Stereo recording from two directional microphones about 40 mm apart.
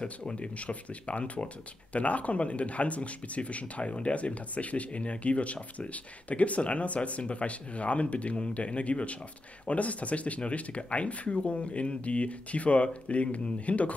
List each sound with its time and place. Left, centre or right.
0.0 s speech: centre
0.4 s speech: left